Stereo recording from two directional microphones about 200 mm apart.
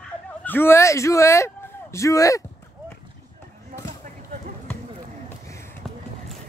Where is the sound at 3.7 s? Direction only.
45° right (ahead or behind).